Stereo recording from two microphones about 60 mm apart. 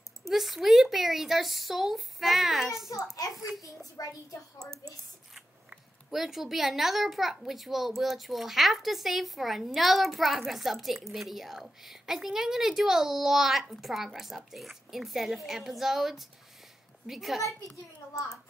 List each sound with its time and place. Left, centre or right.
0.3 s a child's voice: centre
2.9 s a child's voice: left
3.6 s a child's voice: left
6.0 s a child's voice: centre